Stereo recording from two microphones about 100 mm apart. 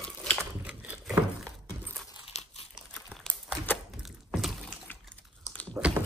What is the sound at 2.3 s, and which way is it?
Crumpling, 90° left.